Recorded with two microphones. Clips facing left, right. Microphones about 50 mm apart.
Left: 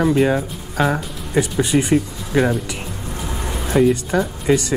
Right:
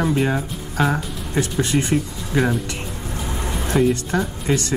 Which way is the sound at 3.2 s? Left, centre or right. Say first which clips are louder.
Even; centre.